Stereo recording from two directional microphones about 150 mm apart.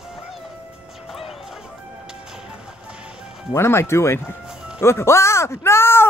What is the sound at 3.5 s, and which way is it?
Speech, 15° left (ahead or behind).